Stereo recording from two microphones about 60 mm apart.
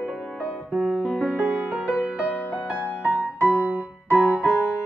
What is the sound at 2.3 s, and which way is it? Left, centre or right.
Music, left.